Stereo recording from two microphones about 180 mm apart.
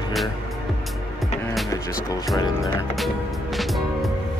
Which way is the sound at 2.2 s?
20° left (ahead or behind).